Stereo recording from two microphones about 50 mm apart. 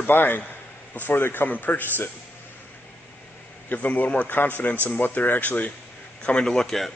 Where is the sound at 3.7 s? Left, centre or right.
Left.